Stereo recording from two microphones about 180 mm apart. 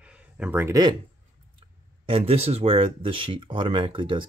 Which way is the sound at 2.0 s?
30° right (ahead or behind).